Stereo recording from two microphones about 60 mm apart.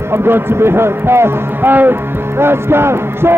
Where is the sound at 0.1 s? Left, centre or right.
Right.